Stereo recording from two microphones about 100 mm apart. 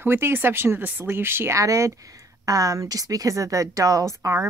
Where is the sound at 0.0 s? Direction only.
25° right (ahead or behind).